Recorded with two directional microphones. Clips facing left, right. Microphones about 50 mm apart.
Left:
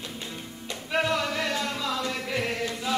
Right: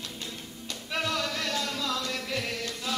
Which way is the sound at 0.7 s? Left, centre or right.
Left.